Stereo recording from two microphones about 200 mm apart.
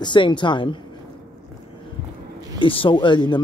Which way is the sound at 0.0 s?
25° left (ahead or behind).